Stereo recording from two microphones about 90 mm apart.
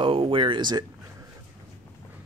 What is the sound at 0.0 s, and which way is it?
Speech, 80° right.